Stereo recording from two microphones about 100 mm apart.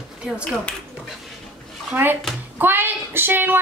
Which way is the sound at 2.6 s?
20° right (ahead or behind).